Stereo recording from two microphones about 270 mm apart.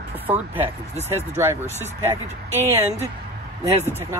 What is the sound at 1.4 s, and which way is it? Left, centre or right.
Speech, centre.